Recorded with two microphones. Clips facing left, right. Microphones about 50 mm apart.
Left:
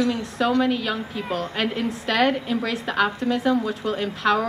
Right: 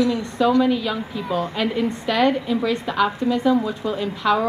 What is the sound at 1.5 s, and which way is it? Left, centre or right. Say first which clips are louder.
A woman's voice: right 3 dB; centre.